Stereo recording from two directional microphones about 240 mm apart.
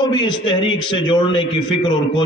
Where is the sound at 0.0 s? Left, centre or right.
Centre.